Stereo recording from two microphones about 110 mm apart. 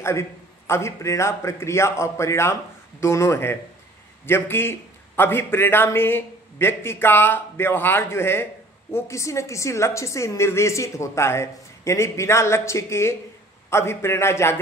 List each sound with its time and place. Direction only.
0.0 s a man's voice: 25° left (ahead or behind)